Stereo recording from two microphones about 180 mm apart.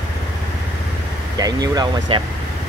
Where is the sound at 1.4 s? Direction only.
20° right (ahead or behind).